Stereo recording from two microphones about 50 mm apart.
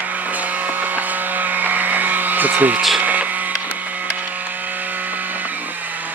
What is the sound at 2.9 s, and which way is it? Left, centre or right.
Printer, right.